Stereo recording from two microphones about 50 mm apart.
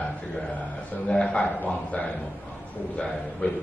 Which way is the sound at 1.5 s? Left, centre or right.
Left.